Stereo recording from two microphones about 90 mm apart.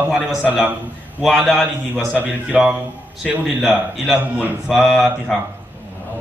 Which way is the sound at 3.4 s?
Centre (ahead or behind).